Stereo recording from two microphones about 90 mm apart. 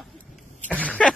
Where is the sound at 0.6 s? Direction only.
15° left (ahead or behind).